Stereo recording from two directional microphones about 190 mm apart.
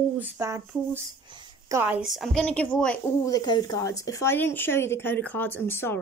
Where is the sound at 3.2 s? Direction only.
20° left (ahead or behind).